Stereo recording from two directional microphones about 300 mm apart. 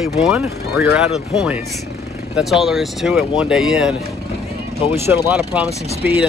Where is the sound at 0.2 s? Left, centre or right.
Centre.